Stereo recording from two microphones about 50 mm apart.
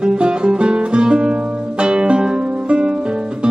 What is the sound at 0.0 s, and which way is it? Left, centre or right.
Music, centre.